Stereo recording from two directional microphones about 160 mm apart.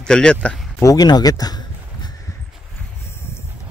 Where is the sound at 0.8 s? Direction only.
25° left (ahead or behind).